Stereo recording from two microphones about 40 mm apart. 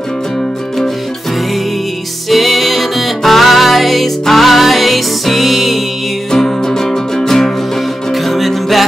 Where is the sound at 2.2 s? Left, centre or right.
Centre.